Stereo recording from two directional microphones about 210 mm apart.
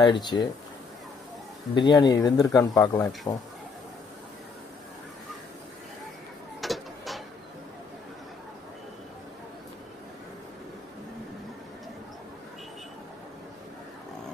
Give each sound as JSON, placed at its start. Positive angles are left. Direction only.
{"t": 0.0, "sound": "speech", "side_deg": 20}
{"t": 1.8, "sound": "speech", "side_deg": 20}
{"t": 6.6, "sound": "mechanisms", "side_deg": 0}